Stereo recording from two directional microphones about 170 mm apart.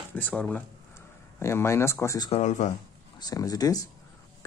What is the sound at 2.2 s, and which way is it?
Speech, 40° left (ahead or behind).